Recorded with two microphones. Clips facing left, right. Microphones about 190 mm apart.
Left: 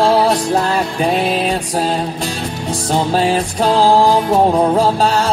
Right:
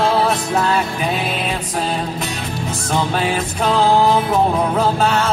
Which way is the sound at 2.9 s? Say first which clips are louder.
Left 4 dB; 30° left (ahead or behind).